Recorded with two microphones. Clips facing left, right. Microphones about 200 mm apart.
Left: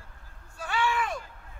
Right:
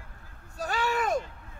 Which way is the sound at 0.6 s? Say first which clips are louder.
Right 1 dB; 40° right (ahead or behind).